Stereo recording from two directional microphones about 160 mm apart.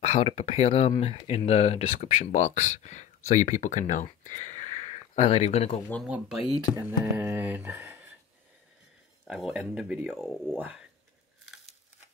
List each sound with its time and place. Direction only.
0.0 s speech: 40° left (ahead or behind)
6.0 s speech: 5° right (ahead or behind)
9.2 s speech: centre (ahead or behind)